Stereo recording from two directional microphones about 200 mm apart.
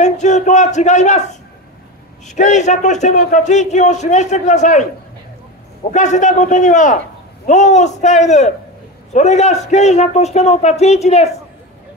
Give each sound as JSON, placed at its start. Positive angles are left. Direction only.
{"t": 0.0, "sound": "a man's voice", "side_deg": 35}
{"t": 2.3, "sound": "a man's voice", "side_deg": 35}
{"t": 5.9, "sound": "a man's voice", "side_deg": 35}